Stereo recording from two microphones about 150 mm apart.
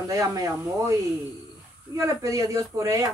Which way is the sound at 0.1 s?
25° right (ahead or behind).